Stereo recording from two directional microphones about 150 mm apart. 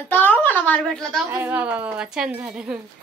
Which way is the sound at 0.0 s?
10° left (ahead or behind).